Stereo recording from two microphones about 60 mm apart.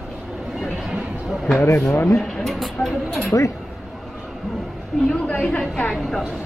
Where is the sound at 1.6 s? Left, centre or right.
Left.